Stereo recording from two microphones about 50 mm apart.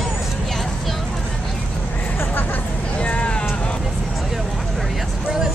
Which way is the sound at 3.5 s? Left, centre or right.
Left.